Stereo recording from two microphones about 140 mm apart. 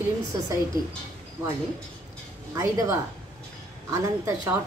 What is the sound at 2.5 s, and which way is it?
A woman's voice, 20° right (ahead or behind).